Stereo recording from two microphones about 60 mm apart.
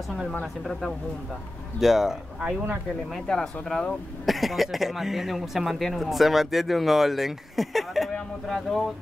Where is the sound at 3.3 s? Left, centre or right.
Centre.